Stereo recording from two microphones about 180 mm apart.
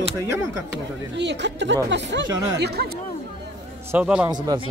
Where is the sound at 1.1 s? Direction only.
75° right (ahead or behind).